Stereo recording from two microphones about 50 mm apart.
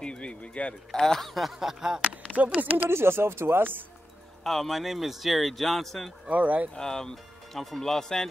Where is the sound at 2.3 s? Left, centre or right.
Right.